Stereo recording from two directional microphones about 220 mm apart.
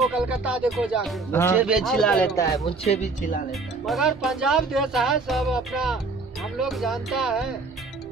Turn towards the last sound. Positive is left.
turn(degrees=0)  # may be behind; listen again after turning